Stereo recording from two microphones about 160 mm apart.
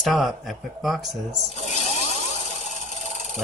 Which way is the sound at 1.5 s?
45° left (ahead or behind).